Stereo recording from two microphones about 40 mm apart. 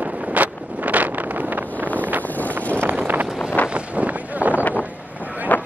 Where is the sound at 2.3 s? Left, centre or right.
Left.